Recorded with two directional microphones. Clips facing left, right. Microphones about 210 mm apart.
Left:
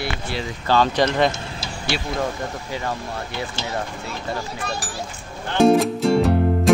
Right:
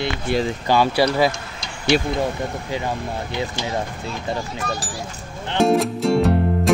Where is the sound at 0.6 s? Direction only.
10° right (ahead or behind).